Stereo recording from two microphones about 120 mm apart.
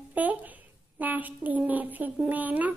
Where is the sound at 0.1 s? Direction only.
15° right (ahead or behind).